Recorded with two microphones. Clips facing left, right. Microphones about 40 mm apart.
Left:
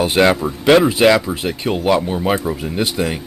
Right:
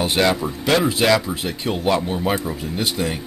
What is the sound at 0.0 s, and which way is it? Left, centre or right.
Speech, left.